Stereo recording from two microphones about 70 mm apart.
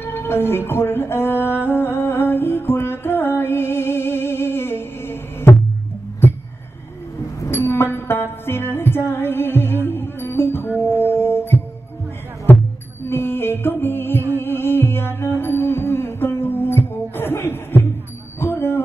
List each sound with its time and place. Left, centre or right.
0.0 s music: left
7.5 s music: left
13.1 s music: left
18.4 s a sound: left